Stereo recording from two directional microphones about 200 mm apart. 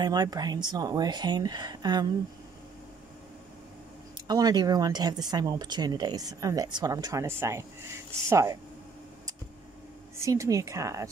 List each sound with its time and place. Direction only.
0.0 s speech: 20° right (ahead or behind)
4.3 s a woman's voice: 20° right (ahead or behind)
10.1 s a woman's voice: 15° right (ahead or behind)